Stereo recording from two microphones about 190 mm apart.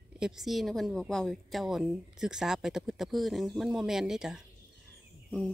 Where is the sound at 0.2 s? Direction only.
Centre (ahead or behind).